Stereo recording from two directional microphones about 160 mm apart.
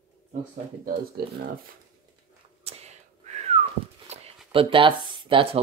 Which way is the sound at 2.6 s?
40° right (ahead or behind).